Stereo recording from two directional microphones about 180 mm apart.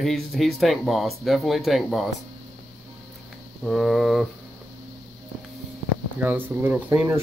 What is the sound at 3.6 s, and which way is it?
Speech, centre (ahead or behind).